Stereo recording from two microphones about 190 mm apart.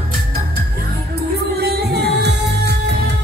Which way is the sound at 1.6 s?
60° right (ahead or behind).